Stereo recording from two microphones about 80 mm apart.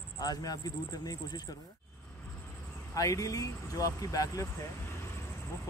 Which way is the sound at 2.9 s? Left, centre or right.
Left.